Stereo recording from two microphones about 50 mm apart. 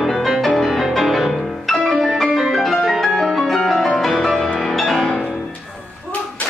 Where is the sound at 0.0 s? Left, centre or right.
Centre.